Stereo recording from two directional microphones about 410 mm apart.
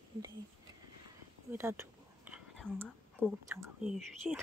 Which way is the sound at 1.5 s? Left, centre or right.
Centre.